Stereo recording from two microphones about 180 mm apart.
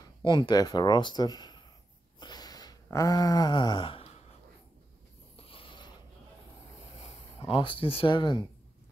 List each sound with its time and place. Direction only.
0.2 s speech: 25° left (ahead or behind)
2.1 s a sound: 25° left (ahead or behind)
5.4 s mechanisms: 30° left (ahead or behind)
7.0 s speech: 30° left (ahead or behind)